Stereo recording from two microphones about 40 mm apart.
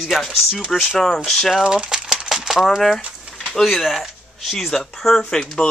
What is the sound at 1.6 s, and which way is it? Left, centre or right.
Crumpling, centre.